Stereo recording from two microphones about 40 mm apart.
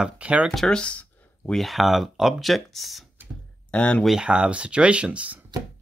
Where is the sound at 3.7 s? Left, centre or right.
Left.